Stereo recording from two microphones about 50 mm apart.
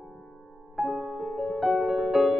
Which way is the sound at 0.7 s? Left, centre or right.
Centre.